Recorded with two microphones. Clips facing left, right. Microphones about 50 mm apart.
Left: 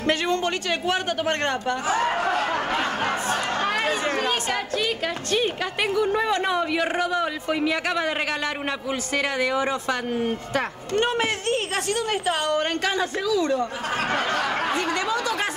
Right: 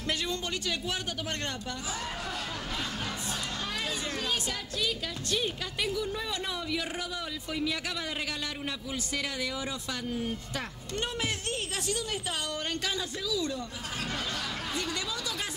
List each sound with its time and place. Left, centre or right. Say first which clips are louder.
0.0 s a man's voice: left 10 dB; left